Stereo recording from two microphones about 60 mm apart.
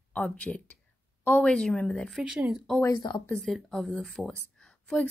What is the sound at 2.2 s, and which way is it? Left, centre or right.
Speech, centre.